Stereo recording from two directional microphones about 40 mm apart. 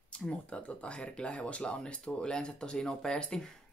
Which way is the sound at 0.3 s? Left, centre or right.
Left.